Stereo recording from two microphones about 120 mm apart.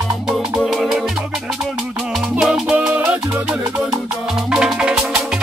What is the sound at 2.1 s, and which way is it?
Music, centre (ahead or behind).